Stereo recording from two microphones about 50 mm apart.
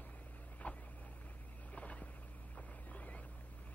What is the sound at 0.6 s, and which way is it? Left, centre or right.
Vehicle, left.